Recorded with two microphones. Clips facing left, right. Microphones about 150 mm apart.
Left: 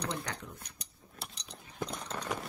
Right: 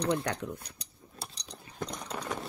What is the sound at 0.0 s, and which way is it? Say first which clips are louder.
Speech: right 8 dB; 60° right (ahead or behind).